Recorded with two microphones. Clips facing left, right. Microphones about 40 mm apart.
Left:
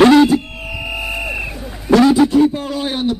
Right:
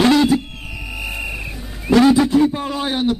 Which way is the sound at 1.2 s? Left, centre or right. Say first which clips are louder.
Left 4 dB; left.